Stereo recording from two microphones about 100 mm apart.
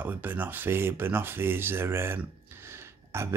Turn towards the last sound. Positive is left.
turn(degrees=-25)  # may be behind; listen again after turning